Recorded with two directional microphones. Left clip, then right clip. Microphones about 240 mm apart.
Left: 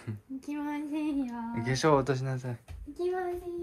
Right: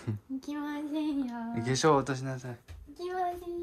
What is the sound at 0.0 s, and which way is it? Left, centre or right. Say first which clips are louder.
Female singing: right 3 dB; right.